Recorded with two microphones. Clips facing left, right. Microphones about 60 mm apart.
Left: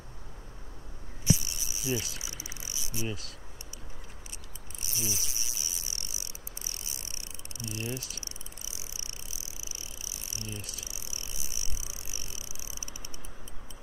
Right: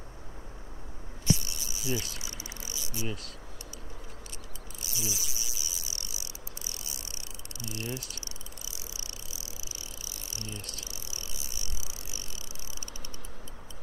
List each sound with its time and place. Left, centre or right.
1.2 s insect: centre
2.0 s speech: centre
2.2 s mechanisms: left
3.1 s speech: centre
4.8 s insect: left
7.6 s speech: left
8.6 s vehicle: left
10.0 s bicycle: left
10.6 s speech: centre
10.9 s bicycle: left